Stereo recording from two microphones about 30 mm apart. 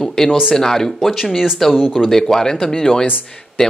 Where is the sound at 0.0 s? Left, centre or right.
Centre.